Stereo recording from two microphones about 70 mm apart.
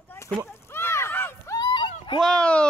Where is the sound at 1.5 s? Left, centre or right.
Left.